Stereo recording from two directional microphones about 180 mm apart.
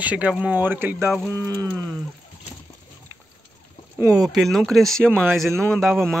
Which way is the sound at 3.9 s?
20° right (ahead or behind).